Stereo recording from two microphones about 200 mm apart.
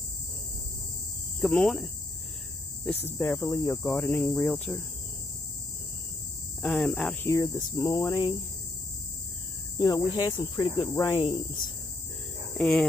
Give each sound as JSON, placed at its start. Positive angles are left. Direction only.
{"t": 1.4, "sound": "cricket", "side_deg": 5}
{"t": 3.1, "sound": "speech", "side_deg": 10}
{"t": 4.1, "sound": "cricket", "side_deg": 5}
{"t": 6.6, "sound": "speech", "side_deg": 5}
{"t": 9.8, "sound": "cricket", "side_deg": 20}
{"t": 12.5, "sound": "speech", "side_deg": 0}